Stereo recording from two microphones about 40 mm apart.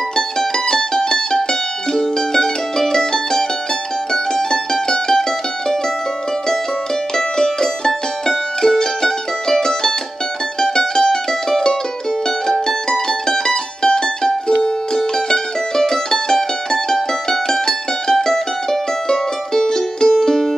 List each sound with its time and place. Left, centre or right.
0.1 s mandolin: centre
7.2 s music: centre
10.6 s mandolin: centre
14.6 s music: centre